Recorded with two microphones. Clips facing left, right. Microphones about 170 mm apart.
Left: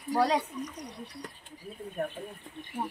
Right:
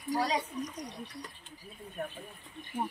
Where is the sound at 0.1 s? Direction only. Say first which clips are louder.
Left 4 dB; 60° left (ahead or behind).